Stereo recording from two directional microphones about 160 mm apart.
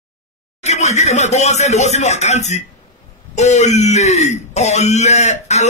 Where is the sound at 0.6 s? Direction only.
45° left (ahead or behind).